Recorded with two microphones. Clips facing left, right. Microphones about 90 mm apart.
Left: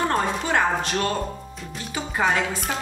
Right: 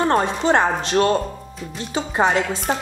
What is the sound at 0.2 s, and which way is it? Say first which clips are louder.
Speech: right 4 dB; 30° right (ahead or behind).